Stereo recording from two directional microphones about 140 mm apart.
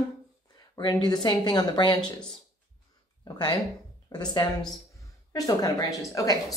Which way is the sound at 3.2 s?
35° left (ahead or behind).